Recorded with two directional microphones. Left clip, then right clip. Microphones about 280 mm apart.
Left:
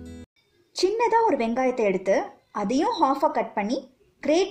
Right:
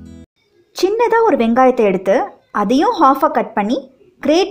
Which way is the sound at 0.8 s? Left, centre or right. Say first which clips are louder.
Right 8 dB; centre.